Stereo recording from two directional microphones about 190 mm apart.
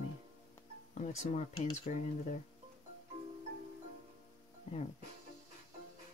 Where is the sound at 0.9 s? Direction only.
40° left (ahead or behind).